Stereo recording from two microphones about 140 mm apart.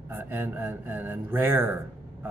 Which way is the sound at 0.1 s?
15° right (ahead or behind).